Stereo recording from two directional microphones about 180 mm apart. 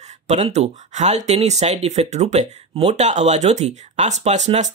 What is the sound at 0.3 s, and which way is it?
Speech, 35° right (ahead or behind).